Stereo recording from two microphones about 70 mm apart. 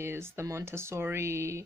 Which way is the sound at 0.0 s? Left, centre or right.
Right.